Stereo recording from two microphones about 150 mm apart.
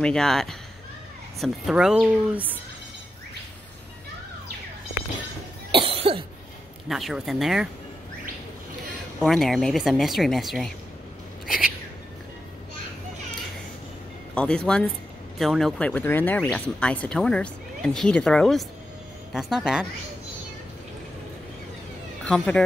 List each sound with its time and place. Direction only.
0.0 s speech: 5° left (ahead or behind)
5.7 s cough: 35° right (ahead or behind)
6.9 s speech: centre (ahead or behind)
9.2 s speech: centre (ahead or behind)
14.3 s speech: 5° left (ahead or behind)
22.2 s speech: 5° left (ahead or behind)